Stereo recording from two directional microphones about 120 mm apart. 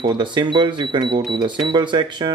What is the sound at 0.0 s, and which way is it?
Speech, 40° right (ahead or behind).